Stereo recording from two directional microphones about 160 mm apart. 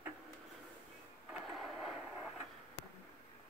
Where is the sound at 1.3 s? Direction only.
Centre (ahead or behind).